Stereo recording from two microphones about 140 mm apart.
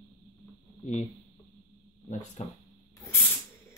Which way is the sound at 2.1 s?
65° left (ahead or behind).